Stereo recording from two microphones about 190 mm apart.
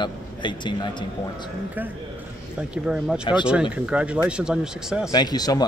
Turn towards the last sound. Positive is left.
turn(degrees=20)  # may be behind; listen again after turning